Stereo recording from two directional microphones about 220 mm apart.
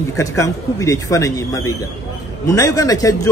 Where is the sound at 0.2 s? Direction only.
15° left (ahead or behind).